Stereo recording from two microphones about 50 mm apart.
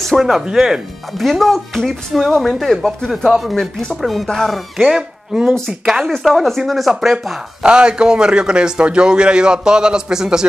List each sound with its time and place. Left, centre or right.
0.0 s speech: centre
0.3 s a man's voice: centre
1.2 s speech: centre
3.3 s speech: centre
4.9 s a man's voice: centre
6.0 s speech: centre
7.6 s a man's voice: centre